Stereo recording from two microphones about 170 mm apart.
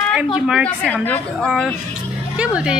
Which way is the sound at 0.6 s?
10° left (ahead or behind).